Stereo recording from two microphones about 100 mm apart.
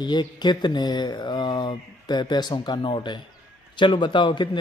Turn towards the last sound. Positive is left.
turn(degrees=50)  # may be behind; listen again after turning